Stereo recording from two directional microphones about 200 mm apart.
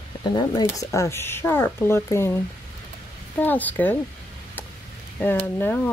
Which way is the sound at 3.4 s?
10° left (ahead or behind).